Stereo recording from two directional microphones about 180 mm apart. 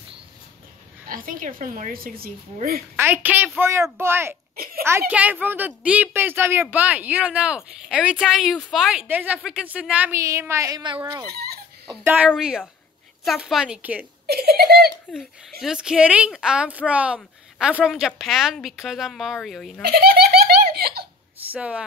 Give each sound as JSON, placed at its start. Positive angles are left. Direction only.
{"t": 1.0, "sound": "a woman's voice", "side_deg": -50}
{"t": 3.0, "sound": "a woman's voice", "side_deg": -10}
{"t": 11.3, "sound": "baby laughter", "side_deg": -60}
{"t": 11.9, "sound": "a woman's voice", "side_deg": -15}
{"t": 14.2, "sound": "speech", "side_deg": -60}
{"t": 15.6, "sound": "a woman's voice", "side_deg": -5}
{"t": 19.9, "sound": "giggle", "side_deg": -60}
{"t": 21.4, "sound": "speech", "side_deg": -10}